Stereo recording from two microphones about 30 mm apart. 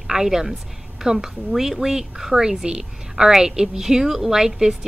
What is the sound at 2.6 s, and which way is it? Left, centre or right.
A woman's voice, right.